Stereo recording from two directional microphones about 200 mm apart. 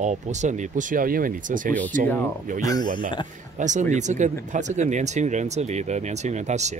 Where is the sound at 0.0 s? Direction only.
35° right (ahead or behind).